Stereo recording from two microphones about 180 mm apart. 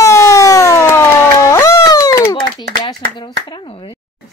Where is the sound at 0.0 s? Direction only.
15° left (ahead or behind).